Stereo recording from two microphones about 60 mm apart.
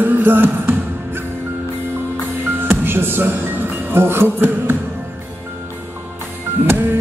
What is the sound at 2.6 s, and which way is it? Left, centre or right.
Speech, right.